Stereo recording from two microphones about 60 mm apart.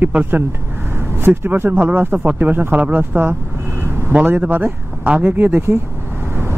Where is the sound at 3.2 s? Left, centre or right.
Right.